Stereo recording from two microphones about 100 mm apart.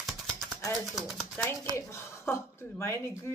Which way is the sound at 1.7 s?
30° left (ahead or behind).